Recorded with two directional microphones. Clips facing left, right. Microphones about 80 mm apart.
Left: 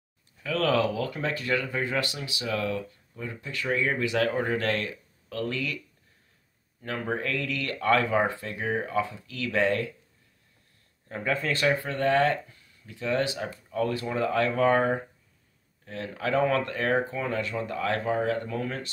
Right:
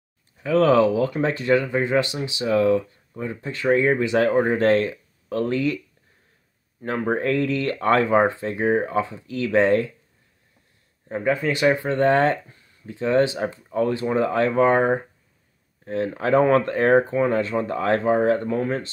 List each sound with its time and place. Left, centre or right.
0.4 s speech: right
6.8 s speech: right
11.1 s speech: right